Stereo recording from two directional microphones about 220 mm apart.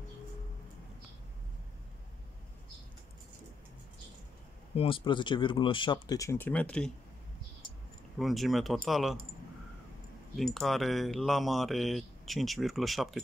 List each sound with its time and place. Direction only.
4.7 s speech: 25° left (ahead or behind); by 6.9 s 5° left (ahead or behind)
8.2 s speech: centre (ahead or behind)
10.3 s speech: centre (ahead or behind)